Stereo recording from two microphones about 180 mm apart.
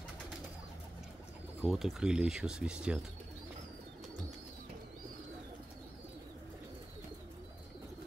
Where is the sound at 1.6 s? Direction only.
Centre (ahead or behind).